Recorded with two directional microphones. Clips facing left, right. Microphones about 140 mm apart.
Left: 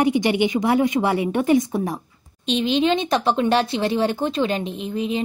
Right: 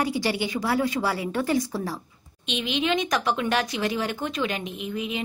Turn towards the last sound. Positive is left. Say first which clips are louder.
# left 6 dB
turn(degrees=30)  # may be behind; listen again after turning